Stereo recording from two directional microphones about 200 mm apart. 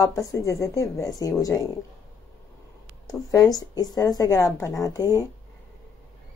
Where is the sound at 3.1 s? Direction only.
15° left (ahead or behind).